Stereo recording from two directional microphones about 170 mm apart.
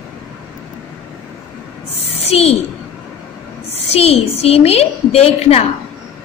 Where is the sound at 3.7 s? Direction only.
35° left (ahead or behind).